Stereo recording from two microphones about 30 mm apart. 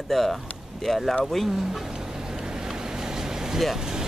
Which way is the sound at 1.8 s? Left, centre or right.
Right.